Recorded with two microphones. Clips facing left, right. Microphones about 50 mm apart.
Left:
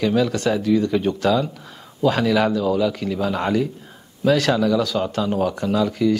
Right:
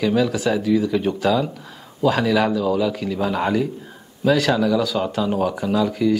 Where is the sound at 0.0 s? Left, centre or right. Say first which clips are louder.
Even; centre.